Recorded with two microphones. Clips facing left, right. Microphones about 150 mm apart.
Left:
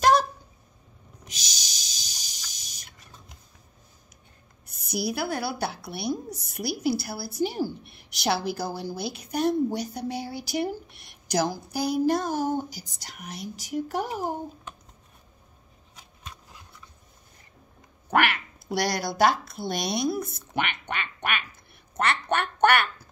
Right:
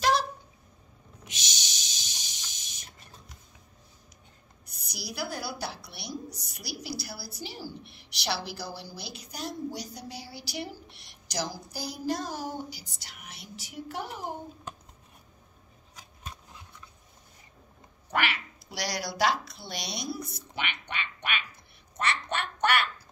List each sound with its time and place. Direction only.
0.0 s a sound: 45° left (ahead or behind)
4.6 s a woman's voice: 55° left (ahead or behind)
18.1 s speech: 55° left (ahead or behind)
21.9 s quack: 55° left (ahead or behind)